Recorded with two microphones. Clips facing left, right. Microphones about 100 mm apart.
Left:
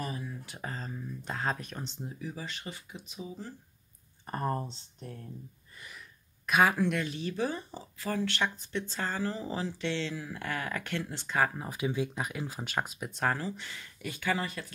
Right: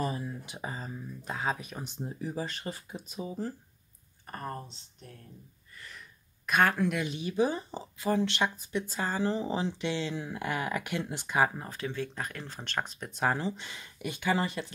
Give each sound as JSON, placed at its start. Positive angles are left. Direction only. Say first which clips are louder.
{"t": 0.0, "sound": "a sound", "louder": "right 4 dB", "side_deg": -30}
{"t": 0.5, "sound": "speech", "louder": "right 1 dB", "side_deg": -10}
{"t": 2.0, "sound": "speech", "louder": "right 8 dB", "side_deg": -35}
{"t": 4.3, "sound": "speech", "louder": "left 6 dB", "side_deg": 30}
{"t": 5.9, "sound": "a sound", "louder": "even", "side_deg": 0}
{"t": 7.0, "sound": "speech", "louder": "right 3 dB", "side_deg": -15}
{"t": 11.5, "sound": "speech", "louder": "left 3 dB", "side_deg": 10}
{"t": 13.3, "sound": "speech", "louder": "right 2 dB", "side_deg": -20}